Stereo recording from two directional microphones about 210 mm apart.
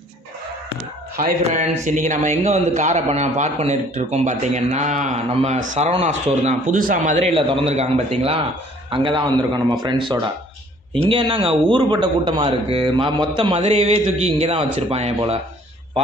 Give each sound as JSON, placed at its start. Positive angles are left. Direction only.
{"t": 1.4, "sound": "a man's voice", "side_deg": -35}